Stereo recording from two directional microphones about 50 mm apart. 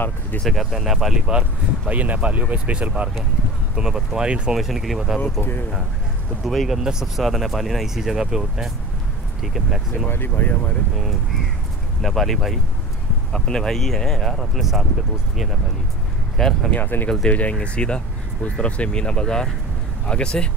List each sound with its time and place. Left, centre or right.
0.5 s speech: centre
1.9 s speech: right
3.7 s speech: centre
5.4 s speech: left
6.4 s speech: centre
6.8 s speech: centre
10.0 s speech: left
12.0 s speech: centre
13.3 s speech: centre
16.3 s speech: centre
16.7 s speech: left
17.6 s speech: centre